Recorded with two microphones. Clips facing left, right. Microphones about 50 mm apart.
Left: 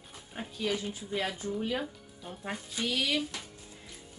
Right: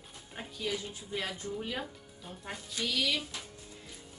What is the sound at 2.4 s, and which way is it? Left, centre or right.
Speech, left.